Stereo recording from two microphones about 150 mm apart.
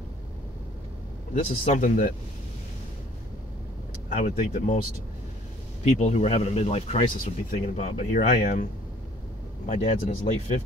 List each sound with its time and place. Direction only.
1.3 s speech: 65° left (ahead or behind)
4.1 s speech: 55° left (ahead or behind)
5.9 s speech: 50° left (ahead or behind)
9.7 s speech: 55° left (ahead or behind)